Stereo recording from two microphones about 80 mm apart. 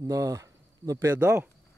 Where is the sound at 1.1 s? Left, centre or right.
Right.